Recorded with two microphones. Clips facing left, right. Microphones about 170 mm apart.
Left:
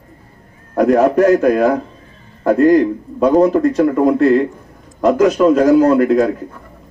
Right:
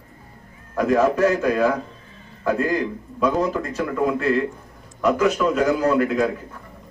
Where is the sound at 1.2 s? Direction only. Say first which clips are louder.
Left 7 dB; 40° left (ahead or behind).